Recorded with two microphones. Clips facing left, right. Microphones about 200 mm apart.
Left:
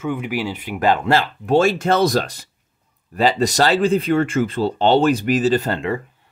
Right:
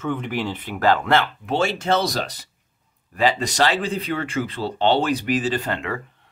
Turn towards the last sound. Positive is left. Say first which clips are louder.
# left 6 dB
turn(degrees=40)  # may be behind; listen again after turning